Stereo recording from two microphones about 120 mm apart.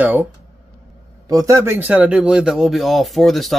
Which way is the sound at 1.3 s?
30° right (ahead or behind).